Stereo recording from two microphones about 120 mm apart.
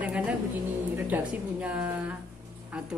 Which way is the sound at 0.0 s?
5° right (ahead or behind).